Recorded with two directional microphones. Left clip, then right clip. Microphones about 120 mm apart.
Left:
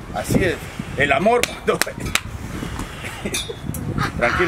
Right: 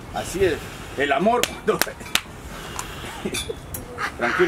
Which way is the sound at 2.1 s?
Centre (ahead or behind).